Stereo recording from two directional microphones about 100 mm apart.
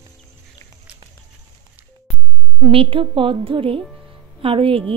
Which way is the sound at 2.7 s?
60° right (ahead or behind).